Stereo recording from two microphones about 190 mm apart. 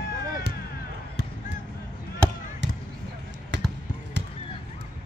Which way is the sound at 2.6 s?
70° right (ahead or behind).